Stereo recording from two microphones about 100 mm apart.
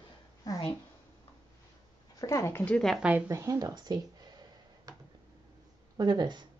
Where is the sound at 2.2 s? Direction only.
35° left (ahead or behind).